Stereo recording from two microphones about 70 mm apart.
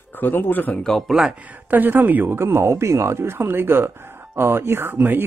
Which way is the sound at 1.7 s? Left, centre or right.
Right.